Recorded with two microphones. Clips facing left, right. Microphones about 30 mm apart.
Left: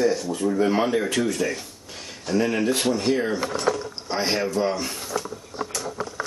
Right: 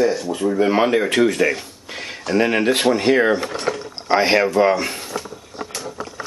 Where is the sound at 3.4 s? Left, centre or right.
Right.